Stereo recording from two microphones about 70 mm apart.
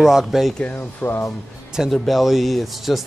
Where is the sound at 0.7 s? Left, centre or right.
Left.